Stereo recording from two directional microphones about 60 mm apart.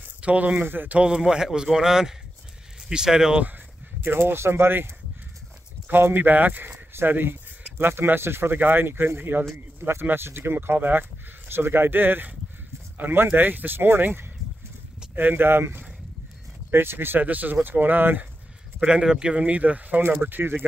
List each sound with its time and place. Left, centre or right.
0.2 s speech: right
0.7 s speech: right
0.9 s a man's voice: centre
3.3 s speech: right
17.2 s speech: right
18.8 s speech: centre; by 20.6 s right